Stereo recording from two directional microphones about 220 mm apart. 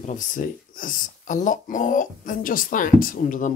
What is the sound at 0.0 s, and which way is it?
Speech, 35° left (ahead or behind).